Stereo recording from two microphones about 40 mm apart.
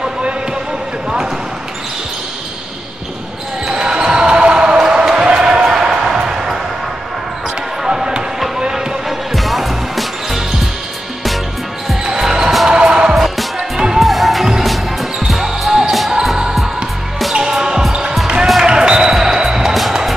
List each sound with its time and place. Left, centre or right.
3.6 s basketball bounce: centre
4.7 s basketball bounce: centre
7.8 s basketball bounce: centre
9.3 s music: centre
12.1 s music: centre
13.1 s music: centre
13.6 s music: centre
13.9 s music: centre
14.6 s basketball bounce: centre
17.3 s music: centre
18.2 s basketball bounce: centre
19.9 s music: centre